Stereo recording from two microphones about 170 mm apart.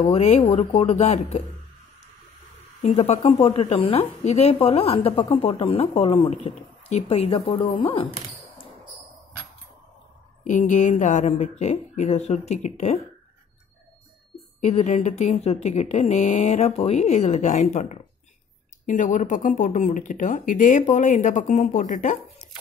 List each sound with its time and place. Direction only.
0.0 s speech: 40° left (ahead or behind)
2.8 s speech: 40° left (ahead or behind)
10.4 s speech: 45° left (ahead or behind)
14.6 s speech: 40° left (ahead or behind)